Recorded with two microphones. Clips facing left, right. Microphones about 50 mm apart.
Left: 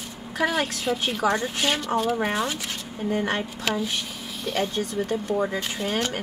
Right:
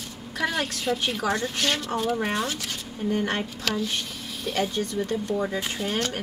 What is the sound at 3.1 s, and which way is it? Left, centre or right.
Speech, centre.